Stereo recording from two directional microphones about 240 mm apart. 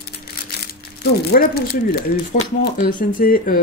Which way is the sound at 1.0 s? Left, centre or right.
Left.